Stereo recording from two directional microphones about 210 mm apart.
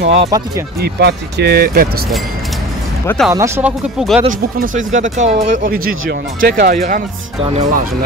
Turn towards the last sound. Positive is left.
turn(degrees=-35)  # may be behind; listen again after turning